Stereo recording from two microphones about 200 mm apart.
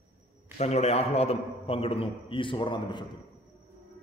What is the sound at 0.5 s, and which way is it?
A man's voice, 35° left (ahead or behind).